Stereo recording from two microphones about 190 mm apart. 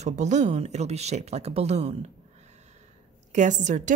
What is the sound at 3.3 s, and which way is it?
Speech, 40° right (ahead or behind).